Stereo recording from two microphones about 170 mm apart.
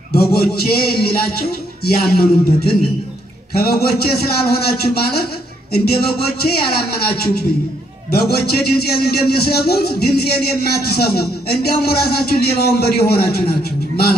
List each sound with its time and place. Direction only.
0.1 s a man's voice: 65° left (ahead or behind)